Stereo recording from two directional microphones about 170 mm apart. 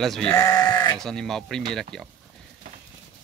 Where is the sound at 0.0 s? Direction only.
Centre (ahead or behind).